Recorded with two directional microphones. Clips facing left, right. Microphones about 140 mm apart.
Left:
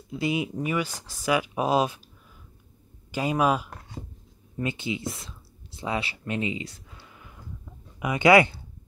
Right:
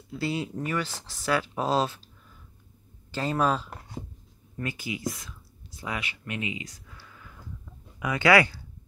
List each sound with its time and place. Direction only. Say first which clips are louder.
0.1 s speech: left 3 dB; 15° left (ahead or behind)
3.1 s speech: left 2 dB; 10° left (ahead or behind)
4.6 s speech: left 4 dB; 25° left (ahead or behind)
5.8 s a sound: left 5 dB; 30° left (ahead or behind)